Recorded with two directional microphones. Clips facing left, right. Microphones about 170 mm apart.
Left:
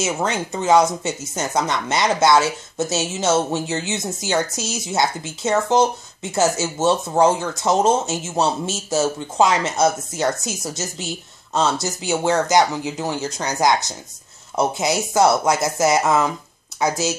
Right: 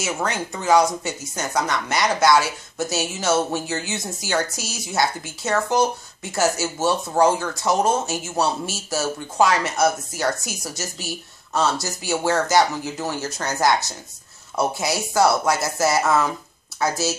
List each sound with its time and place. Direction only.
0.0 s speech: 20° left (ahead or behind)